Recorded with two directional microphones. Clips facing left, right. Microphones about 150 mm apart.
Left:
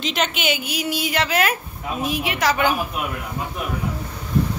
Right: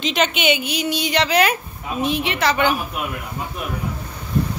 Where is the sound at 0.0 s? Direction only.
Centre (ahead or behind).